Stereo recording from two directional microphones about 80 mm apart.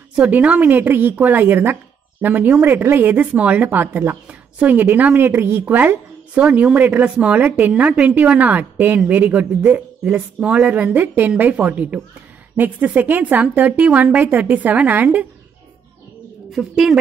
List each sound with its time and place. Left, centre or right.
0.3 s a woman's voice: centre
16.5 s speech: centre